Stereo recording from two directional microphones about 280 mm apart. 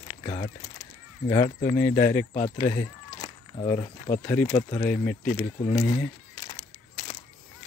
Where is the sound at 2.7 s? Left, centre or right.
Centre.